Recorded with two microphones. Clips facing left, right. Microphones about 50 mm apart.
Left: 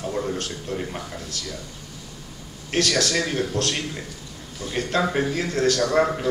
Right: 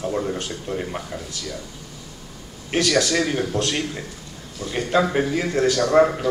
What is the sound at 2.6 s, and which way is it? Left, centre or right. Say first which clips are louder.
Speech: right 2 dB; centre.